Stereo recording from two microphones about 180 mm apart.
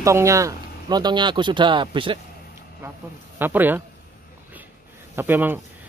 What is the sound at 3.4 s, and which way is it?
Speech, 10° right (ahead or behind).